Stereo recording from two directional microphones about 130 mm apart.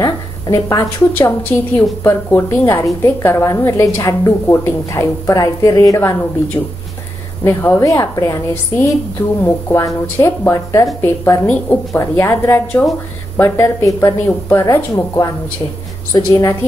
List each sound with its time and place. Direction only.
0.0 s a woman's voice: 25° left (ahead or behind)
1.4 s a woman's voice: 10° left (ahead or behind)
9.4 s a woman's voice: 20° left (ahead or behind)